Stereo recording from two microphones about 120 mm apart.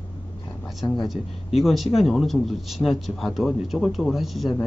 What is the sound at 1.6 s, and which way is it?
Speech, centre (ahead or behind).